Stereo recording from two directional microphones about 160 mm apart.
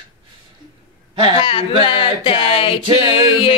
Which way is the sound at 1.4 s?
35° left (ahead or behind).